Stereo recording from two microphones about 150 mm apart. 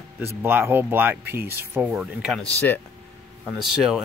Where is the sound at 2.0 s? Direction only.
5° right (ahead or behind).